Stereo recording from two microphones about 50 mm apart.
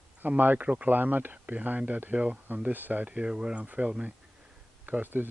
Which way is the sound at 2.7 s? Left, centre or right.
Right.